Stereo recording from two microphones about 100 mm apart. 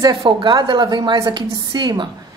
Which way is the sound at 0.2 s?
50° right (ahead or behind).